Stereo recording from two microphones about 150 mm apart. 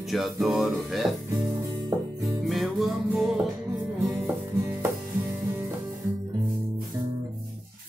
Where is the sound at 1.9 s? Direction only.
20° right (ahead or behind).